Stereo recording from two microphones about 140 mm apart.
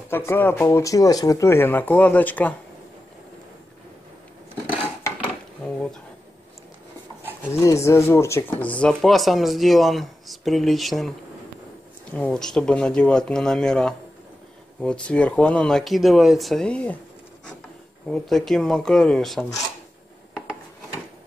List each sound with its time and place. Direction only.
0.1 s speech: 15° left (ahead or behind)
7.5 s speech: 20° left (ahead or behind); by 11.1 s centre (ahead or behind)
12.1 s speech: 10° left (ahead or behind)
18.0 s speech: centre (ahead or behind)